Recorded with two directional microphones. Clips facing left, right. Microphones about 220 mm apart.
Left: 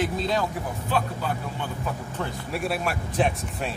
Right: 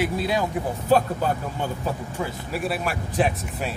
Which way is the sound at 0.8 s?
40° right (ahead or behind).